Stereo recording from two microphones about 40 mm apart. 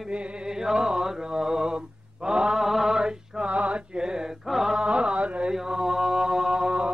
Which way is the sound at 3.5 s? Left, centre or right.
Right.